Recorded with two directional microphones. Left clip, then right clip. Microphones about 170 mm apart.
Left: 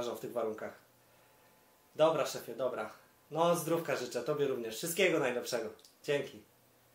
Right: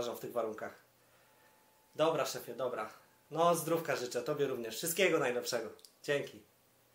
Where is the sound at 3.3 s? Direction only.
40° right (ahead or behind).